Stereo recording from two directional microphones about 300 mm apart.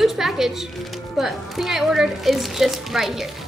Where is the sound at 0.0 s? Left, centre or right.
Centre.